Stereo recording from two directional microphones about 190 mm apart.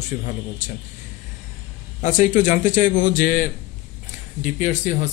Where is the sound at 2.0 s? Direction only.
40° left (ahead or behind).